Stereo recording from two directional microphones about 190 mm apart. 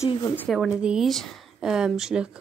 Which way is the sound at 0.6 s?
5° right (ahead or behind).